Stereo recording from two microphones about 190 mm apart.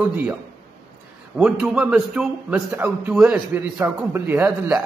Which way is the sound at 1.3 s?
5° right (ahead or behind).